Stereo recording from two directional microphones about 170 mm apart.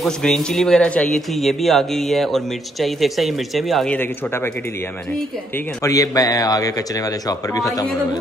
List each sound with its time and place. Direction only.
0.0 s speech: 5° left (ahead or behind)
5.8 s a man's voice: 20° left (ahead or behind)